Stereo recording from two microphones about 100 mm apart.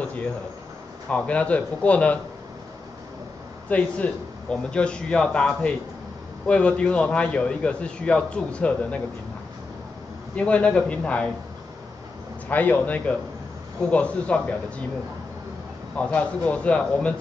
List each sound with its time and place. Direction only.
1.0 s a man's voice: 10° left (ahead or behind)
3.6 s a man's voice: 15° left (ahead or behind)
10.3 s a man's voice: 10° left (ahead or behind)
12.4 s a man's voice: 15° left (ahead or behind)
16.0 s a man's voice: 15° left (ahead or behind)